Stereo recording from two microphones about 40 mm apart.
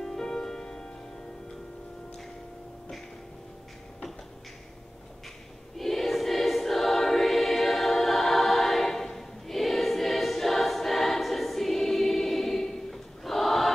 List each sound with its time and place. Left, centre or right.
0.0 s music: centre
5.8 s music: centre